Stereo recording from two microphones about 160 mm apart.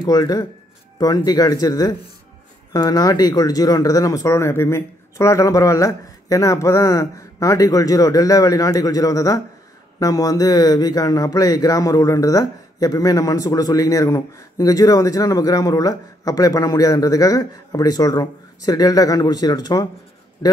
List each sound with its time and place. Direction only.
0.0 s a man's voice: 25° left (ahead or behind)